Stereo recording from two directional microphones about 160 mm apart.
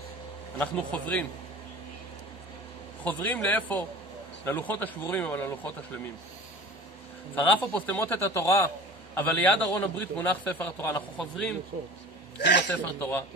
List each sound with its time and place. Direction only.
0.6 s a man's voice: 10° left (ahead or behind)
3.0 s a man's voice: 10° left (ahead or behind)
7.6 s a man's voice: 10° left (ahead or behind)
11.7 s speech: 50° right (ahead or behind)
12.4 s speech: 90° left
12.6 s a man's voice: 15° left (ahead or behind)